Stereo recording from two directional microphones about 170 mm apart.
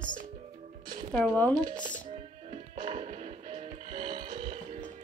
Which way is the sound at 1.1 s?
5° left (ahead or behind).